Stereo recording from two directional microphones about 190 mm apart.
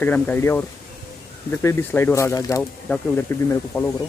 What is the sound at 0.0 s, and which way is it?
Speech, 10° left (ahead or behind).